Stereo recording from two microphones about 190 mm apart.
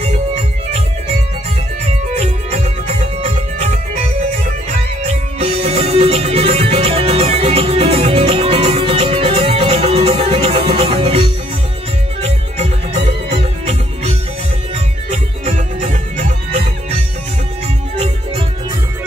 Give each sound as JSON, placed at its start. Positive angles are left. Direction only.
{"t": 0.0, "sound": "music", "side_deg": -35}
{"t": 2.1, "sound": "music", "side_deg": -35}
{"t": 5.0, "sound": "music", "side_deg": -35}
{"t": 15.4, "sound": "music", "side_deg": -40}